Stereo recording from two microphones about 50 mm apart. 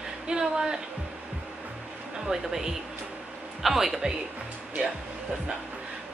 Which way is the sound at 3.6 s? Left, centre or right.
Centre.